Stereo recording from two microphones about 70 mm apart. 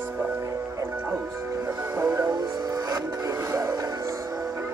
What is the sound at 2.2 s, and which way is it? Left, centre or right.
Speech, right.